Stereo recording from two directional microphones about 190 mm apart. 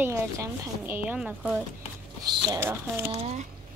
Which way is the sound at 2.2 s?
20° right (ahead or behind).